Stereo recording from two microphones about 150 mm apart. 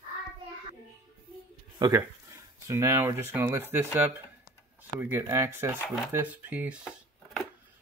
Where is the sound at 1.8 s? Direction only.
30° right (ahead or behind); by 4.1 s 15° right (ahead or behind).